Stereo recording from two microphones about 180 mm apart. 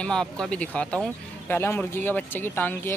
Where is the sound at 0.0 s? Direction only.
5° left (ahead or behind).